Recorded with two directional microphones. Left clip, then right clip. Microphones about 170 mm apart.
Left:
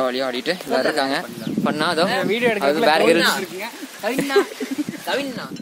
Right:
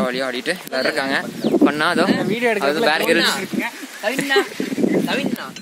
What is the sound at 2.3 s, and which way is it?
Speech, 45° right (ahead or behind).